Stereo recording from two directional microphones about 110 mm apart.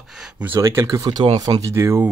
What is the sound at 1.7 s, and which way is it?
Speech, 25° right (ahead or behind).